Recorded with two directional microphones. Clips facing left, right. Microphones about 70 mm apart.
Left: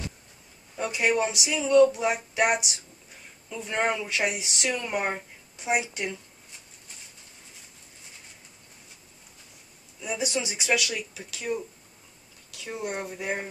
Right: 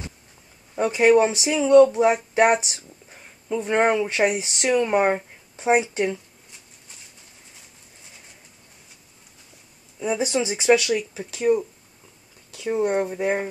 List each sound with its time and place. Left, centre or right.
0.7 s speech: right
9.9 s speech: right